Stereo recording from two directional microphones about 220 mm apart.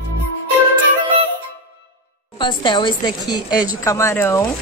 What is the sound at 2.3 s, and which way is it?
A woman's voice, 20° left (ahead or behind).